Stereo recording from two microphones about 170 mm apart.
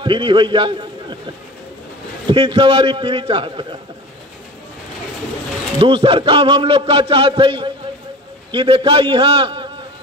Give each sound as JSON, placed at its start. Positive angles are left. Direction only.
{"t": 0.0, "sound": "a man's voice", "side_deg": -30}
{"t": 2.2, "sound": "a man's voice", "side_deg": -35}
{"t": 5.8, "sound": "a man's voice", "side_deg": -30}